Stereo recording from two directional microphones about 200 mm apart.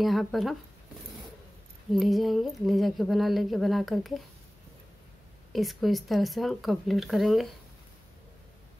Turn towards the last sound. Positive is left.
turn(degrees=0)  # may be behind; listen again after turning